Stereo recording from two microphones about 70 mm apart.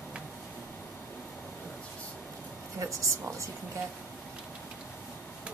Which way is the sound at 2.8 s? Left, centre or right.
Right.